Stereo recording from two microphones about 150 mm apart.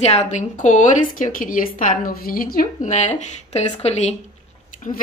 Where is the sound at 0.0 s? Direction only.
50° left (ahead or behind); by 2.6 s 70° left (ahead or behind).